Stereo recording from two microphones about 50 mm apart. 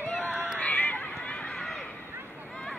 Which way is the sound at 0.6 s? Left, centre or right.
Left.